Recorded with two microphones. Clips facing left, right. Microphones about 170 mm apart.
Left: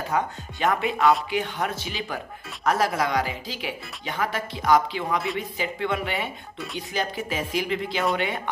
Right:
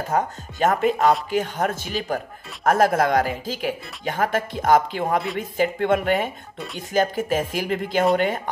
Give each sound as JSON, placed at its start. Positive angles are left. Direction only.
{"t": 0.1, "sound": "speech", "side_deg": -45}